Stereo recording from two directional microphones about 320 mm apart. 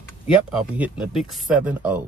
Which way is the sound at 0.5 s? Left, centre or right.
Centre.